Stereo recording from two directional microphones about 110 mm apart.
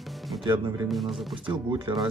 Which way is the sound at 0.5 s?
35° right (ahead or behind).